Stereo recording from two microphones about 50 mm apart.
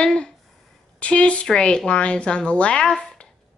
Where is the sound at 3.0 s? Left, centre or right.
Centre.